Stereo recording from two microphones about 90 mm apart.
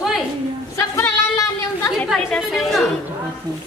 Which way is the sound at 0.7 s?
35° left (ahead or behind).